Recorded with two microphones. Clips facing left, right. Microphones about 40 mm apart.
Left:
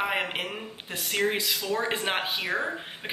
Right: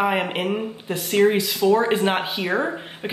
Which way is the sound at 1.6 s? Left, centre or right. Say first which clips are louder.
Right 16 dB; centre.